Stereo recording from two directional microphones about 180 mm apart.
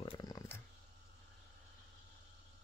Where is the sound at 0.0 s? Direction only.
25° left (ahead or behind).